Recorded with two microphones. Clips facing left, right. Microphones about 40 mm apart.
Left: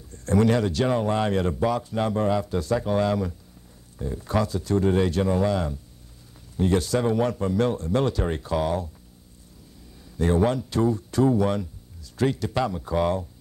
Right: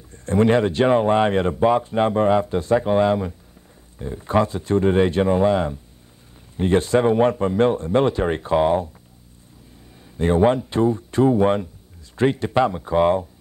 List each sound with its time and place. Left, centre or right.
0.1 s speech: right
10.0 s speech: right